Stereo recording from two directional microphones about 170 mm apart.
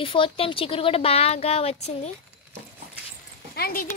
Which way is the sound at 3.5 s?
65° left (ahead or behind).